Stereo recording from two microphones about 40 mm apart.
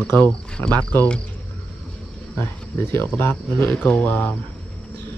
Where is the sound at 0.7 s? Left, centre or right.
Left.